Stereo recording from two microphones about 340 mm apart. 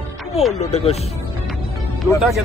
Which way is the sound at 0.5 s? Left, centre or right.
Centre.